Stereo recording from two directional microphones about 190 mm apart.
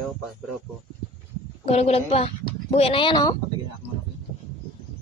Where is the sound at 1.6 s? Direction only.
30° left (ahead or behind).